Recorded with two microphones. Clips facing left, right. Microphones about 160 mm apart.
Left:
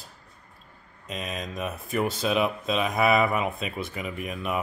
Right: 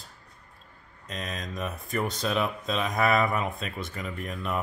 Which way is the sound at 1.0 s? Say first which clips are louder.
Left 2 dB; 10° left (ahead or behind).